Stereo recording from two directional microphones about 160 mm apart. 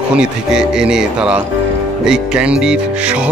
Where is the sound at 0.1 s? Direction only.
5° right (ahead or behind).